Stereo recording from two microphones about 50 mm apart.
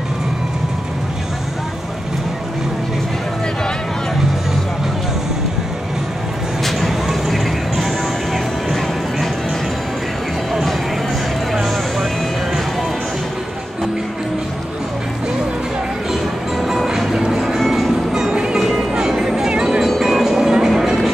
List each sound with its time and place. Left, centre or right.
6.6 s vehicle: centre
11.5 s vehicle: centre
16.1 s music: centre
18.3 s music: centre
18.6 s music: centre